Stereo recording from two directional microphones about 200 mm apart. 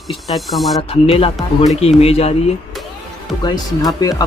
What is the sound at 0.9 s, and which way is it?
Speech, 30° left (ahead or behind).